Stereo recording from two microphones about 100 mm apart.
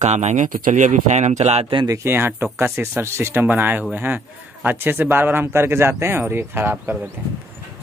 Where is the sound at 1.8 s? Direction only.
35° right (ahead or behind).